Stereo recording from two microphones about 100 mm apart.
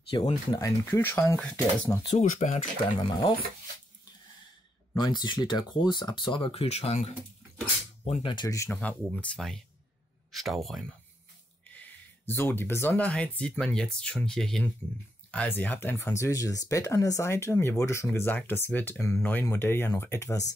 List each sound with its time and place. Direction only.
0.1 s speech: 65° left (ahead or behind)
0.5 s speech: 35° left (ahead or behind)
2.0 s speech: 90° left
3.0 s speech: 45° left (ahead or behind)
4.9 s speech: 45° left (ahead or behind)
6.5 s speech: 90° left
8.0 s speech: 60° left (ahead or behind)
8.6 s speech: 15° left (ahead or behind)
10.3 s speech: centre (ahead or behind)
11.6 s speech: 15° left (ahead or behind)
15.3 s speech: 15° left (ahead or behind)